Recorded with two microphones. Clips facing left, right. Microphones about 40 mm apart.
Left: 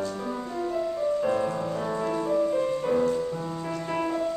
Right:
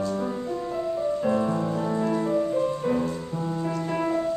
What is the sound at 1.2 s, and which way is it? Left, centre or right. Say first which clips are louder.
Music: right 2 dB; centre.